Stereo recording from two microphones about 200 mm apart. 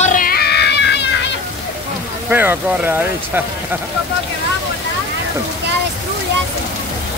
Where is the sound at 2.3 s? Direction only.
10° right (ahead or behind).